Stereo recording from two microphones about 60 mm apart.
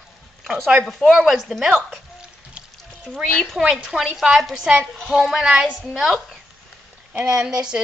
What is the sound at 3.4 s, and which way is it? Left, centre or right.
Speech, centre.